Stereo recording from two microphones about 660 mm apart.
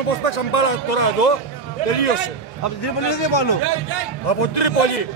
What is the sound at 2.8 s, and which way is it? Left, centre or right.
Speech, left.